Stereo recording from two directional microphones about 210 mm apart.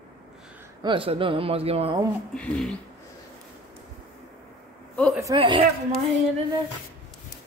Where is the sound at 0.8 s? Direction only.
25° right (ahead or behind).